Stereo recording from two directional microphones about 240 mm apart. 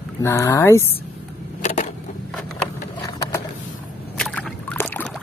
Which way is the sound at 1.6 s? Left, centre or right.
Left.